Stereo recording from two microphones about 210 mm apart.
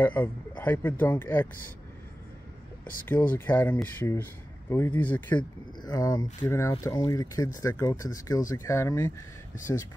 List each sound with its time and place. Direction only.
0.0 s speech: 10° left (ahead or behind)
2.8 s speech: 10° left (ahead or behind)
5.4 s speech: 20° left (ahead or behind)